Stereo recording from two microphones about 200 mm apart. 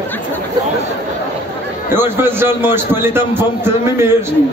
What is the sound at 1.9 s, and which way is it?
A man's voice, 10° right (ahead or behind).